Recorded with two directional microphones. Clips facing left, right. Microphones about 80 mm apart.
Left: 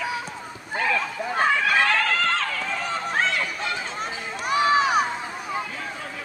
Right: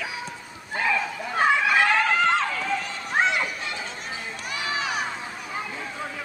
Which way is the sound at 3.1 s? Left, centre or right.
Centre.